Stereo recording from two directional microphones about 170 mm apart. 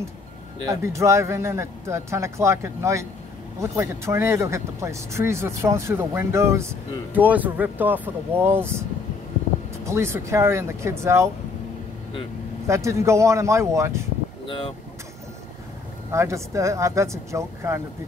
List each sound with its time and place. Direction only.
0.7 s speech: 15° right (ahead or behind)
9.8 s speech: 15° right (ahead or behind)
12.6 s speech: 15° right (ahead or behind)
14.4 s speech: 30° left (ahead or behind)
16.1 s speech: 15° right (ahead or behind)